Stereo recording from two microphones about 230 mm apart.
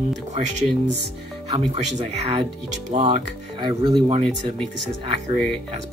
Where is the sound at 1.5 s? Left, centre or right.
Right.